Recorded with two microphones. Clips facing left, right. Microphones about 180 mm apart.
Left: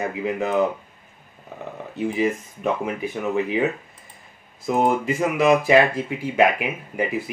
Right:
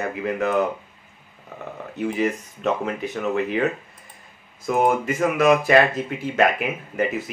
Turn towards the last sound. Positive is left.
turn(degrees=15)  # may be behind; listen again after turning